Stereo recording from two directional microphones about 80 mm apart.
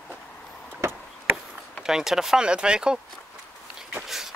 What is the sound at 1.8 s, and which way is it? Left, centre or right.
Speech, centre.